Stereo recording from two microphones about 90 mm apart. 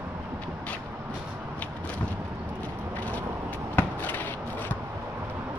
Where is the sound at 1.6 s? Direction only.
15° left (ahead or behind).